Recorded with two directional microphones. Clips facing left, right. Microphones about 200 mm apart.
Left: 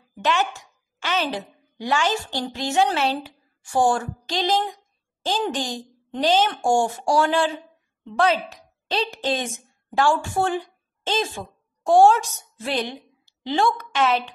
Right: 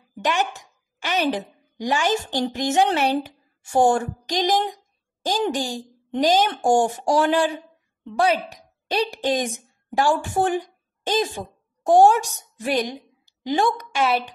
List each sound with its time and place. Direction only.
0.2 s a woman's voice: 15° right (ahead or behind)